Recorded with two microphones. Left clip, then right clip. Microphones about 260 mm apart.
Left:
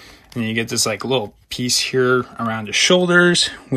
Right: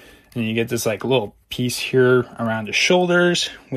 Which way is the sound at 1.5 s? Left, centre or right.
Left.